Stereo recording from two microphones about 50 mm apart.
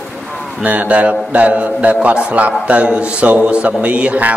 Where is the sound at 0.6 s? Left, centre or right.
Right.